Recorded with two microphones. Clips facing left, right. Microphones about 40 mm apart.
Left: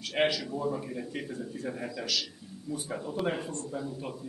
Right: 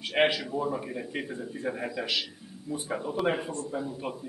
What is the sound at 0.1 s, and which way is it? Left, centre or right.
Speech, right.